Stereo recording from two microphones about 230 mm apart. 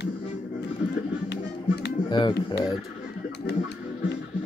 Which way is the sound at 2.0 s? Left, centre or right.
Centre.